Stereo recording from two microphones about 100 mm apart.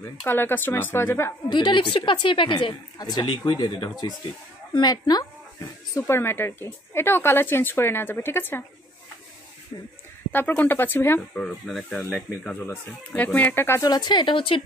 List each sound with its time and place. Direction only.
0.2 s speech: 20° left (ahead or behind)
1.5 s a woman's voice: 50° left (ahead or behind)
3.0 s speech: 40° left (ahead or behind)
4.7 s speech: 40° left (ahead or behind)
5.9 s speech: 25° left (ahead or behind)
10.3 s speech: 15° left (ahead or behind)
11.1 s speech: 5° left (ahead or behind)
12.1 s speech: 20° left (ahead or behind)
13.7 s a woman's voice: 40° left (ahead or behind); by 14.6 s 60° left (ahead or behind)